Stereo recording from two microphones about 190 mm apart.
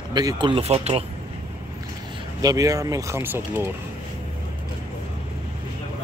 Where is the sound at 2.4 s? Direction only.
20° right (ahead or behind).